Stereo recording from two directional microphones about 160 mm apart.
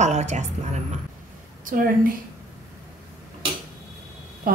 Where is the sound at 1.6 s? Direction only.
60° right (ahead or behind).